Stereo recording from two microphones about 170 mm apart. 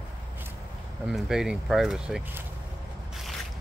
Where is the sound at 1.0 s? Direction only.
5° right (ahead or behind).